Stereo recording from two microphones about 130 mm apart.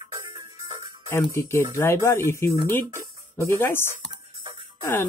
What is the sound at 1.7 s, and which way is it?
Speech, 20° left (ahead or behind).